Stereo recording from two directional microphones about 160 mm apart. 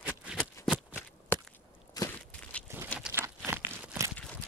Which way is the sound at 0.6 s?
10° right (ahead or behind).